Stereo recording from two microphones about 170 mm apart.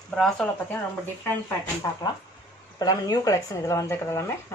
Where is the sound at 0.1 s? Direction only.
Centre (ahead or behind).